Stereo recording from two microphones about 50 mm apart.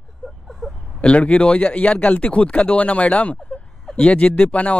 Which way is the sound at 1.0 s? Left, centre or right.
Left.